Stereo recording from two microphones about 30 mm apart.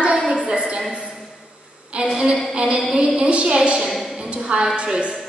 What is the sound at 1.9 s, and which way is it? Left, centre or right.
A woman's voice, right.